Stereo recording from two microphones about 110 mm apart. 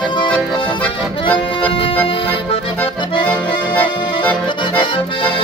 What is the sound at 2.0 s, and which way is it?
Accordion, 60° left (ahead or behind).